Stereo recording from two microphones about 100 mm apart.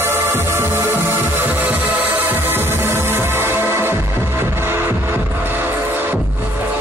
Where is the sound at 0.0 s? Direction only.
25° right (ahead or behind).